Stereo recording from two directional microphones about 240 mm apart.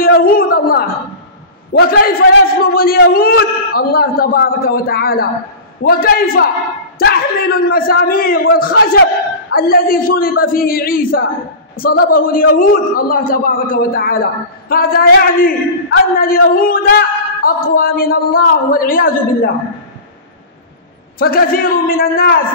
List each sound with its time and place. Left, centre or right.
0.1 s a man's voice: left
21.2 s a man's voice: left